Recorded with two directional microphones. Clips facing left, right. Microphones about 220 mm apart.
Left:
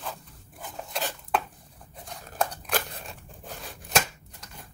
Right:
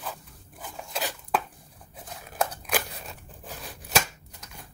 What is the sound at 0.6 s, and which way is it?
Cutlery, centre (ahead or behind).